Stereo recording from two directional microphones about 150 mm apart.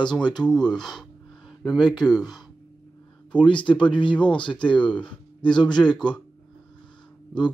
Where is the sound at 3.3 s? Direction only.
35° left (ahead or behind).